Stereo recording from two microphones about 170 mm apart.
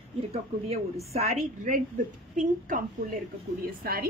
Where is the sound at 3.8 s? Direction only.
65° right (ahead or behind).